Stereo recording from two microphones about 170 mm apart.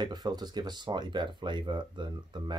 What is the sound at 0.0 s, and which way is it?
Speech, 25° right (ahead or behind).